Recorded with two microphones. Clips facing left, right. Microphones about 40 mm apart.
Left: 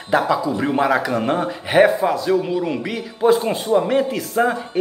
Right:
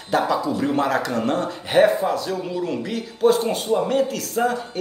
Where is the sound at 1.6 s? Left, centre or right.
Left.